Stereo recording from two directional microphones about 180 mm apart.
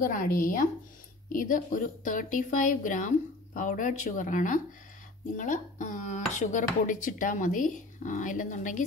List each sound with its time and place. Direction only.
0.0 s speech: 50° left (ahead or behind)